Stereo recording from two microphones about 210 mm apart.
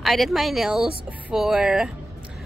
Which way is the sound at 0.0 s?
Centre (ahead or behind).